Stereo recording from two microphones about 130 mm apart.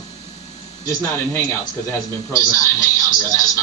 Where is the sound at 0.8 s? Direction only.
20° left (ahead or behind).